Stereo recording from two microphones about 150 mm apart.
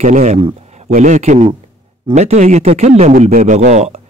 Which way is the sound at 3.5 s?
50° right (ahead or behind).